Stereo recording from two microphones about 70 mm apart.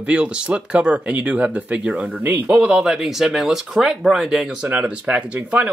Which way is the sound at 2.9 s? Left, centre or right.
Centre.